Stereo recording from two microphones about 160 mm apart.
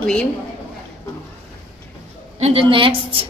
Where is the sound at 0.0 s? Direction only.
5° left (ahead or behind).